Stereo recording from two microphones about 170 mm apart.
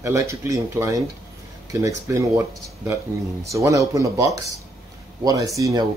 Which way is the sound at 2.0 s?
15° right (ahead or behind).